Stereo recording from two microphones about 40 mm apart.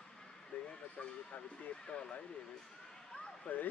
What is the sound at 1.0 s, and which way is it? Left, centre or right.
Speech, left.